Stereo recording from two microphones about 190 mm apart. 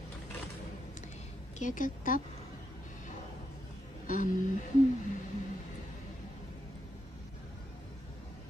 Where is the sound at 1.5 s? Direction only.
40° left (ahead or behind).